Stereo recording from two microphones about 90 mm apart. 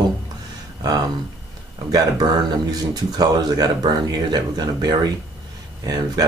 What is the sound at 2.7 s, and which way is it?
Speech, 45° right (ahead or behind).